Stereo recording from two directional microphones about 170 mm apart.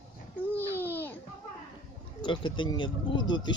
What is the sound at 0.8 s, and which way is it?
Babbling, 10° left (ahead or behind).